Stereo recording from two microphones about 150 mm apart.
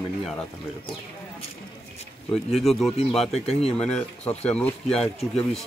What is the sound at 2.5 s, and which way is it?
Speech, centre (ahead or behind).